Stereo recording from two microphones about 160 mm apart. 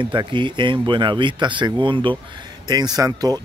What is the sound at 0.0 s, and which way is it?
Speech, 30° right (ahead or behind).